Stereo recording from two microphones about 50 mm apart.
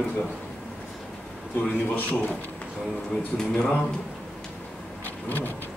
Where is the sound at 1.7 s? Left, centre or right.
Left.